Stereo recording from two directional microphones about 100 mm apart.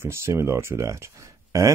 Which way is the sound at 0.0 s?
25° right (ahead or behind).